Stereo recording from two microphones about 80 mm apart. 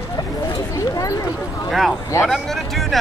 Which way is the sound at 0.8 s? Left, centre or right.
Left.